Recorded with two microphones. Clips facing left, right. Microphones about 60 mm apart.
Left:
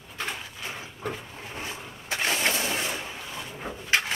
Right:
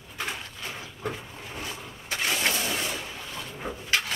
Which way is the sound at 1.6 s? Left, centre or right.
Left.